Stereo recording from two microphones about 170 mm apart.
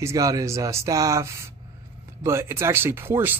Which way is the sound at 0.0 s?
20° right (ahead or behind).